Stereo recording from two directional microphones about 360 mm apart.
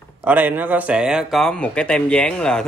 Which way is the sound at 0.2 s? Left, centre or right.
Centre.